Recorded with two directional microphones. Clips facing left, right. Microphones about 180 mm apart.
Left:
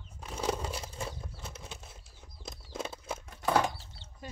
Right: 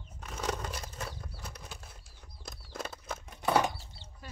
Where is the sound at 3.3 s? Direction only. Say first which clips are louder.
Even; 10° right (ahead or behind).